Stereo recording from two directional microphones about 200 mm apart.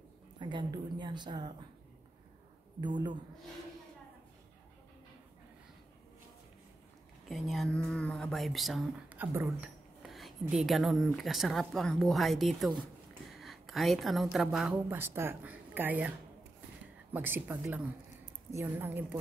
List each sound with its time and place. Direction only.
0.4 s a woman's voice: 25° right (ahead or behind)
2.8 s a woman's voice: 20° right (ahead or behind)
7.2 s speech: centre (ahead or behind)
10.0 s a sound: centre (ahead or behind)
10.4 s a woman's voice: centre (ahead or behind)